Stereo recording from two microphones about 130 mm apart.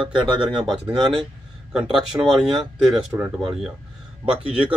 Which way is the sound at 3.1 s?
35° right (ahead or behind).